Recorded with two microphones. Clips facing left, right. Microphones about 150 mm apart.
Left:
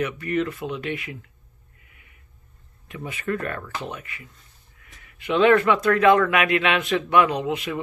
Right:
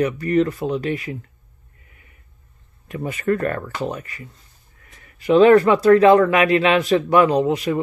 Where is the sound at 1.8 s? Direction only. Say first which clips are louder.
Right 4 dB; 35° right (ahead or behind).